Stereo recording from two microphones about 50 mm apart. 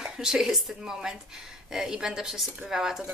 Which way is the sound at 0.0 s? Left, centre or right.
Centre.